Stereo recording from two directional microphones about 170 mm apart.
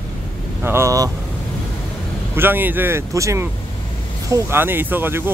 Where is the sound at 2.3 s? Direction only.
10° right (ahead or behind).